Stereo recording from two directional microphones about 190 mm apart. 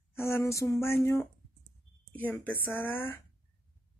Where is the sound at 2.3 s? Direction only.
10° left (ahead or behind).